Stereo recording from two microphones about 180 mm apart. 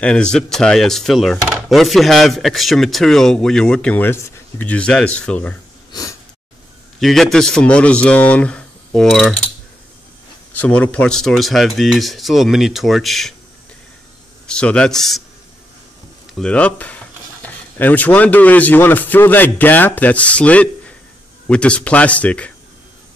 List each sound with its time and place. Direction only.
0.0 s speech: 5° left (ahead or behind)
5.9 s snort: 20° left (ahead or behind)
7.0 s speech: centre (ahead or behind)
10.5 s speech: 10° left (ahead or behind)
14.5 s speech: 5° left (ahead or behind)
16.3 s speech: 5° left (ahead or behind)